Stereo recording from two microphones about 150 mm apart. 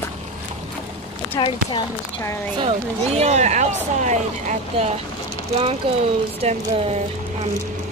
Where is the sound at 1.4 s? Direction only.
35° left (ahead or behind).